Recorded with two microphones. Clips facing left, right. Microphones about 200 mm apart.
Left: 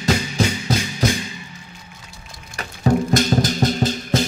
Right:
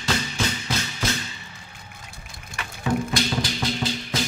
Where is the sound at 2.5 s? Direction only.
40° left (ahead or behind).